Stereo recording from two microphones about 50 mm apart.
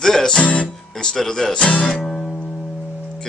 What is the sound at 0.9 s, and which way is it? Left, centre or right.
Speech, centre.